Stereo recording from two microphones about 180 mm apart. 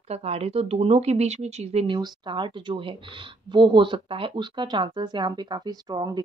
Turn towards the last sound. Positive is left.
turn(degrees=-20)  # may be behind; listen again after turning